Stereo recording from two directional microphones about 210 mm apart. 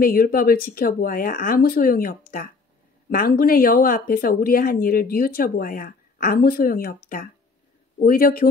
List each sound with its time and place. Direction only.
0.0 s speech: 45° left (ahead or behind)
8.0 s speech: 45° left (ahead or behind)